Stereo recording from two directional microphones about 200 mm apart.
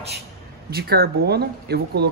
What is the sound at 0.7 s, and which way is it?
Speech, 50° right (ahead or behind).